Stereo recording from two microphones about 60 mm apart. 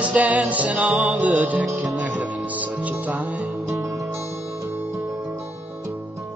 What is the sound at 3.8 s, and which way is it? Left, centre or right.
Music, right.